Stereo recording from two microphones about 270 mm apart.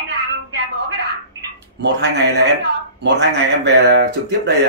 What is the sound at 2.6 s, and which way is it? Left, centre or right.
Speech, right.